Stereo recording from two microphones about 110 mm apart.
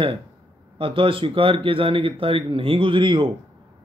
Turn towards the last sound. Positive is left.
turn(degrees=-50)  # may be behind; listen again after turning